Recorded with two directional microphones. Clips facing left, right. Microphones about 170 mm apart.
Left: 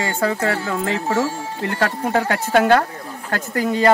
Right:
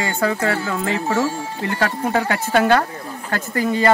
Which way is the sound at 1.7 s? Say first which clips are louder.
Even; 50° left (ahead or behind).